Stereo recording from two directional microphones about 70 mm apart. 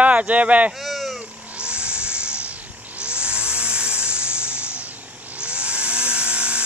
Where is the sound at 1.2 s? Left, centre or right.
Centre.